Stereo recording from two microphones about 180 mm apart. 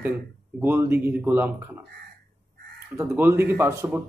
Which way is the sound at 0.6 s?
10° right (ahead or behind).